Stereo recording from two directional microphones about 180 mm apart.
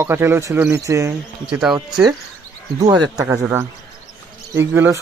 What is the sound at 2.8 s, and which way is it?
Speech, 20° right (ahead or behind).